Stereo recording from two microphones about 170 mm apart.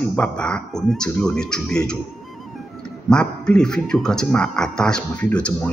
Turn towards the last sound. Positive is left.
turn(degrees=5)  # may be behind; listen again after turning